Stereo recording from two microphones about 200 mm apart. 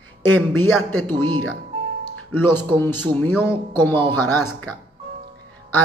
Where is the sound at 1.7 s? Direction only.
30° right (ahead or behind).